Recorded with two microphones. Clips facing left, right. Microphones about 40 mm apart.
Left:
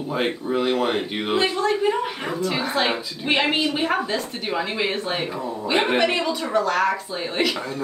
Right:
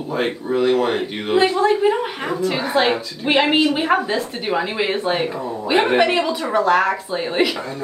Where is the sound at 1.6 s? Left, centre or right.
Centre.